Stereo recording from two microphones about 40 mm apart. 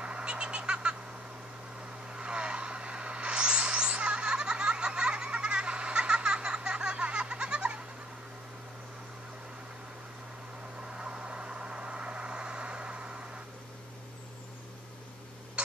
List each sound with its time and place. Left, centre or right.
0.0 s bird: right
2.0 s a sound: right
10.9 s vehicle: right